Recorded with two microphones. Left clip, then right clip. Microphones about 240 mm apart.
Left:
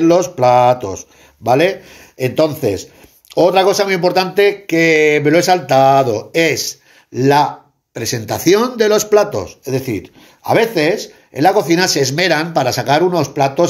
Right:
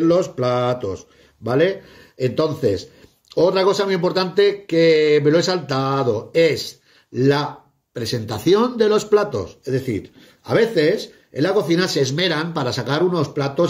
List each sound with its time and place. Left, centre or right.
0.0 s speech: centre
0.4 s mantra: left
0.7 s speech: centre